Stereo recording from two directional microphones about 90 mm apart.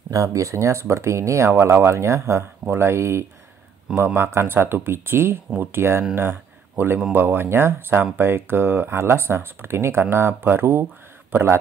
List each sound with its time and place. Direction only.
0.1 s speech: 35° right (ahead or behind)
6.1 s a sound: 25° right (ahead or behind)
7.1 s speech: 25° right (ahead or behind)